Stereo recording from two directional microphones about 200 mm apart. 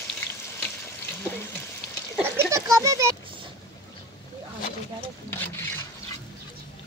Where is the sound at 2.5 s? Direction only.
15° right (ahead or behind).